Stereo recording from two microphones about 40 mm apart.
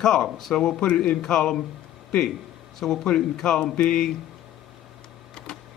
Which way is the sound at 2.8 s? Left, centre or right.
Centre.